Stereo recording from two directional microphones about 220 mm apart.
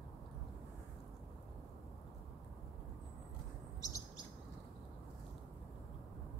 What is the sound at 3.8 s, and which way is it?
Chirp, 15° left (ahead or behind).